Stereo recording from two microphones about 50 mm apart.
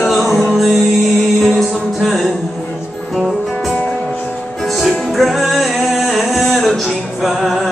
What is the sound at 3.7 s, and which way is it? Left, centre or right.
Music, centre.